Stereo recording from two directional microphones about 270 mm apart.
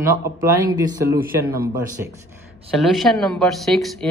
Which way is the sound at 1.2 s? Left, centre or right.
Right.